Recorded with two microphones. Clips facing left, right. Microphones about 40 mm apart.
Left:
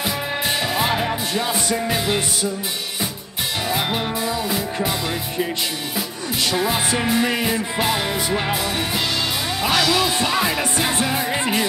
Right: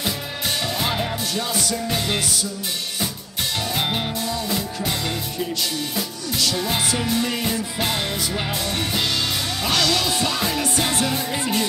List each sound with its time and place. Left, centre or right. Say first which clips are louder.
0.7 s music: left 3 dB; centre
1.9 s music: left 3 dB; centre
4.2 s music: left 2 dB; centre
6.4 s music: left 3 dB; left
9.6 s music: left 3 dB; centre
11.3 s music: left 2 dB; left